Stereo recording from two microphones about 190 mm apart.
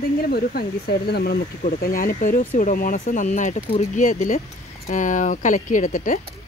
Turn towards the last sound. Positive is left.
turn(degrees=45)  # may be behind; listen again after turning